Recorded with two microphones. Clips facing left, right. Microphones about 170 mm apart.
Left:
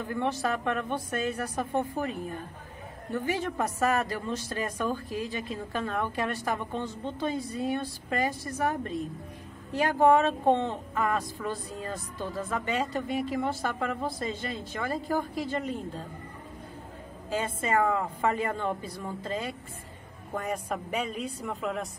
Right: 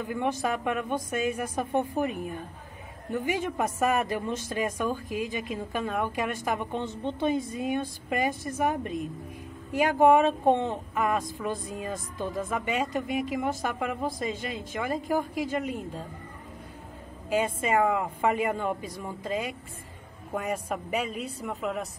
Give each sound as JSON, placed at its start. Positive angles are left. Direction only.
{"t": 0.0, "sound": "speech", "side_deg": -15}
{"t": 17.3, "sound": "speech", "side_deg": -15}